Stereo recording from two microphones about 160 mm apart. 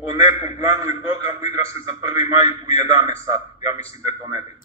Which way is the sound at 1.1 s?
40° left (ahead or behind).